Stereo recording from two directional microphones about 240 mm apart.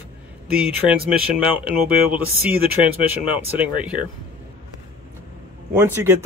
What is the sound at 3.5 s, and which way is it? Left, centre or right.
Speech, centre.